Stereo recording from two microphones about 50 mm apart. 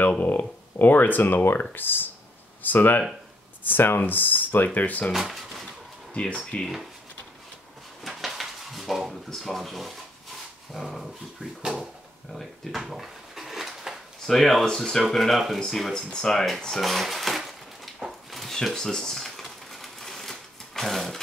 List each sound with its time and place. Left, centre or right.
0.2 s speech: left
5.1 s speech: centre
6.1 s speech: centre
8.0 s a sound: centre
9.3 s speech: centre
12.3 s drawer open or close: centre
14.2 s speech: centre
15.9 s drawer open or close: centre